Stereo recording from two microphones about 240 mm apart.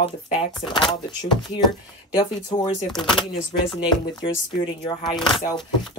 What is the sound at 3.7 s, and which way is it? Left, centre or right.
Speech, left.